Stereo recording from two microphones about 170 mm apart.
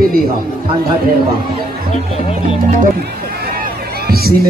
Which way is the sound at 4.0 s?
65° right (ahead or behind).